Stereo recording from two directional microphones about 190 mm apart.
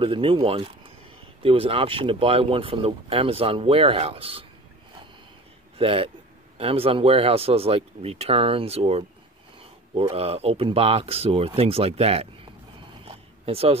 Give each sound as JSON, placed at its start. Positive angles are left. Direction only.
{"t": 0.0, "sound": "speech", "side_deg": -25}
{"t": 5.8, "sound": "speech", "side_deg": -30}